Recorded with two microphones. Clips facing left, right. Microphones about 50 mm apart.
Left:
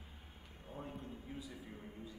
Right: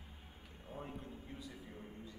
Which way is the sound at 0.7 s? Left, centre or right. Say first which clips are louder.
Even; centre.